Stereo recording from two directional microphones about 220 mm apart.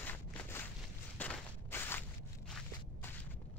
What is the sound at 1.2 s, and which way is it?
Walk, 10° left (ahead or behind).